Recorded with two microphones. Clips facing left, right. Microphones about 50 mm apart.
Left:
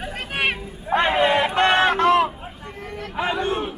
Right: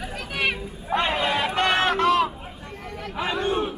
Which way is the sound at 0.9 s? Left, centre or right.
Left.